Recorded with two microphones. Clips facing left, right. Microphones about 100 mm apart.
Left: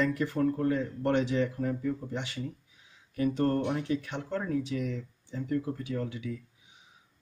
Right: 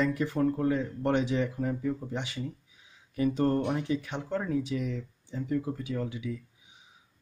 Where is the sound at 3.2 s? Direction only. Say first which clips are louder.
Right 1 dB; 15° right (ahead or behind).